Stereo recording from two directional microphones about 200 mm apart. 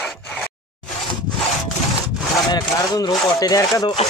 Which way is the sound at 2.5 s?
20° left (ahead or behind).